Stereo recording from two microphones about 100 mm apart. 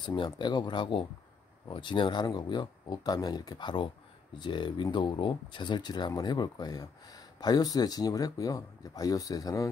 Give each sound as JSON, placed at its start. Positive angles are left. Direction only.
{"t": 0.0, "sound": "speech", "side_deg": 50}